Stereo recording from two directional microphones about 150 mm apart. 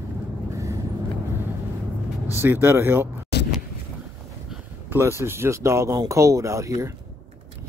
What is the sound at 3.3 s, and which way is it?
Vehicle, 90° left.